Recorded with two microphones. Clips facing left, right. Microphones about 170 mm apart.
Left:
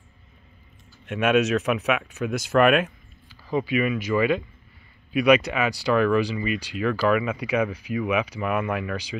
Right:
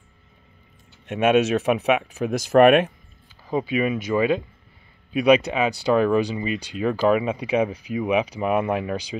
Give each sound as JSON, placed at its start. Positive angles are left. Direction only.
{"t": 1.2, "sound": "speech", "side_deg": -25}
{"t": 5.2, "sound": "speech", "side_deg": -30}